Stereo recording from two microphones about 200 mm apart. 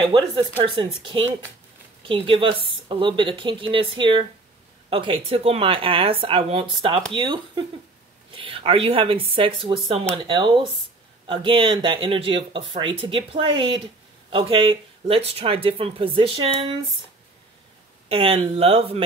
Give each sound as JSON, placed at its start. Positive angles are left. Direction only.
{"t": 0.7, "sound": "speech", "side_deg": -25}
{"t": 18.0, "sound": "speech", "side_deg": -30}